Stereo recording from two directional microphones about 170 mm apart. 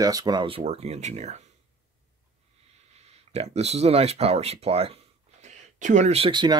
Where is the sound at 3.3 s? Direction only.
40° right (ahead or behind).